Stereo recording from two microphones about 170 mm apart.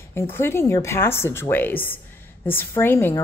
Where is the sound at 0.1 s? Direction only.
15° left (ahead or behind).